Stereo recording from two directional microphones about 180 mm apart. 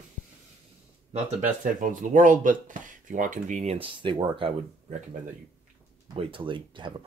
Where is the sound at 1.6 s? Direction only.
45° right (ahead or behind).